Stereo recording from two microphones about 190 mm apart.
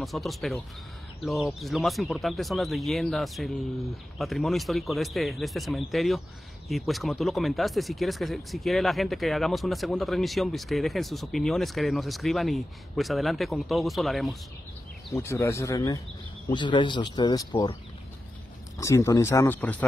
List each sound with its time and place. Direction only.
0.0 s speech: centre (ahead or behind)
15.1 s speech: 15° left (ahead or behind)
18.8 s speech: 15° left (ahead or behind)